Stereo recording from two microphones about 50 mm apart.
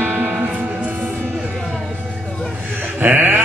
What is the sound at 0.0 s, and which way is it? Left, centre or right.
Music, right.